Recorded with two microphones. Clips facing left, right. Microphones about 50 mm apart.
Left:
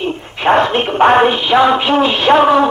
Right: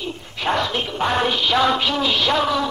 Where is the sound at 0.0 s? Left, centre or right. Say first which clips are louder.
Left 9 dB; left.